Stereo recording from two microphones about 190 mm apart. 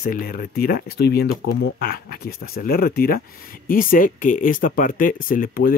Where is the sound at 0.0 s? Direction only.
50° left (ahead or behind).